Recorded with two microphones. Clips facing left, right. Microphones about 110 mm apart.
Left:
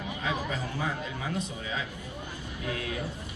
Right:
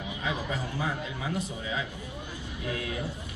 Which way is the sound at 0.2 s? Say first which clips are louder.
Even; 15° right (ahead or behind).